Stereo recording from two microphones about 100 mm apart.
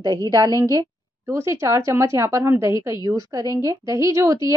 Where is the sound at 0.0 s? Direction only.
40° right (ahead or behind).